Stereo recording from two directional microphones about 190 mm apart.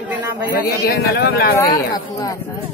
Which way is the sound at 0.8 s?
60° left (ahead or behind).